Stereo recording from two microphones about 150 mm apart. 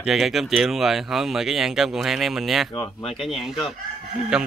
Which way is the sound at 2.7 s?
20° left (ahead or behind).